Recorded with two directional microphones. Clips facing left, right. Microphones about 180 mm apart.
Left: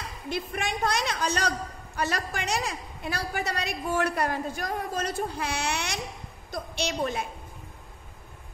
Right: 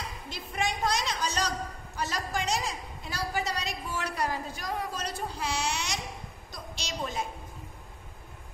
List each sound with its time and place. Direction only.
0.3 s a woman's voice: 60° left (ahead or behind)